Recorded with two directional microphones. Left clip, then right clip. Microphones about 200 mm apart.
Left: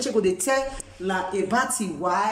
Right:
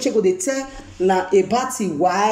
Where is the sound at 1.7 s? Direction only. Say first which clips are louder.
Right 6 dB; 30° right (ahead or behind).